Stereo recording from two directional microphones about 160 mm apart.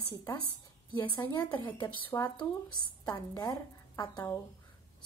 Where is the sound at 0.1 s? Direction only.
25° left (ahead or behind).